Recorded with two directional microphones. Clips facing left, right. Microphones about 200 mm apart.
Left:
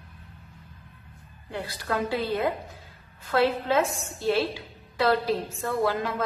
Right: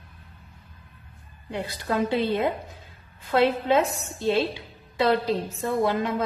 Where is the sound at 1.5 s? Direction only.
20° right (ahead or behind).